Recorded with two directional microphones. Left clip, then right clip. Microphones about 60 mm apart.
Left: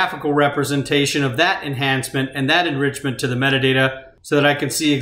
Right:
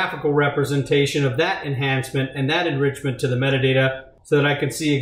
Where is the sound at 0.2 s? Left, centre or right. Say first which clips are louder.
Left 2 dB; left.